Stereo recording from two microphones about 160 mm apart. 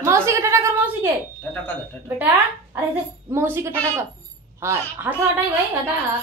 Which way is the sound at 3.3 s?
15° right (ahead or behind).